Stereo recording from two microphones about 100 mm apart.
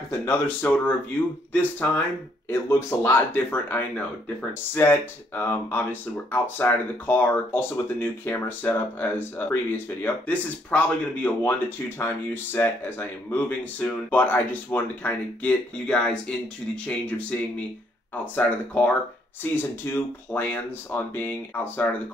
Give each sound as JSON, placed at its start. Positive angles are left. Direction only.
{"t": 0.1, "sound": "speech", "side_deg": 25}